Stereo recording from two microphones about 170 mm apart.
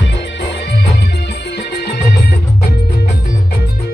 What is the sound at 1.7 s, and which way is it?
Music, 75° left (ahead or behind).